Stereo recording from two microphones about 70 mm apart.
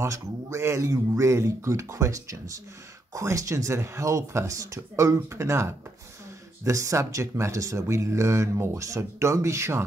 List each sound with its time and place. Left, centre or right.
0.0 s speech: right